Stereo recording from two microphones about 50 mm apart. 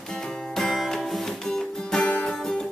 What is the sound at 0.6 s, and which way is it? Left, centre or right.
Music, centre.